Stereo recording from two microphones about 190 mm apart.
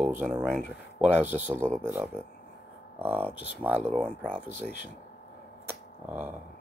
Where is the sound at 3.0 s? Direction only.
10° right (ahead or behind).